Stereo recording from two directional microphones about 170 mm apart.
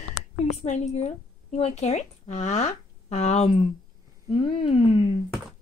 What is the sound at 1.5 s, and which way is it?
Speech, 40° left (ahead or behind).